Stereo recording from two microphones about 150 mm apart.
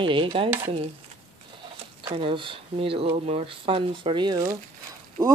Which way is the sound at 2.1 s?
35° right (ahead or behind).